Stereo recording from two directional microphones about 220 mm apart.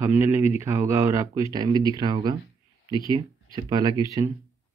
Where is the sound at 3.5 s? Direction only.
15° right (ahead or behind).